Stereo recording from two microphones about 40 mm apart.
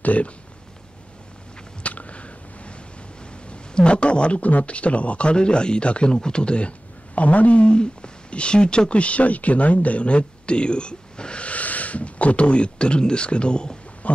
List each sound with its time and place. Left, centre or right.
0.0 s speech: left
1.8 s a sound: left
3.4 s speech: left
7.2 s speech: left
14.0 s speech: left